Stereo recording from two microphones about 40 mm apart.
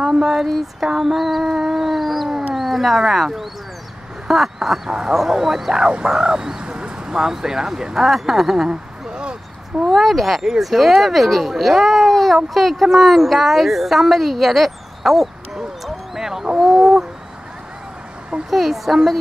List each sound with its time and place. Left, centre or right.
0.2 s speech: centre
0.8 s cat: centre
4.3 s speech: centre
4.8 s speech: centre
7.1 s speech: centre
8.6 s a sound: right
9.8 s a woman's voice: centre
16.5 s a sound: centre
18.5 s speech: centre